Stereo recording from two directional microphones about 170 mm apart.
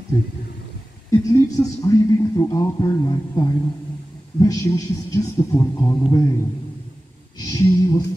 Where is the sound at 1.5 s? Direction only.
20° left (ahead or behind).